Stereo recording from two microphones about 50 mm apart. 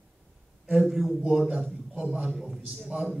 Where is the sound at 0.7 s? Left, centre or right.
Centre.